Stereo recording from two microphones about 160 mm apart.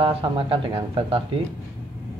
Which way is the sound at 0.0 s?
35° right (ahead or behind).